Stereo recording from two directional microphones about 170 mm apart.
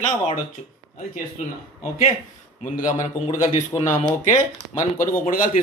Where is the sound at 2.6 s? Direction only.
50° left (ahead or behind).